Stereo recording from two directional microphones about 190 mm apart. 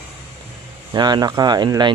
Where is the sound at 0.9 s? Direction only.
20° right (ahead or behind).